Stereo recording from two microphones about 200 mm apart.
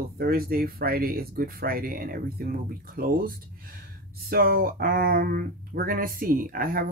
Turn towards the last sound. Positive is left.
turn(degrees=-45)  # may be behind; listen again after turning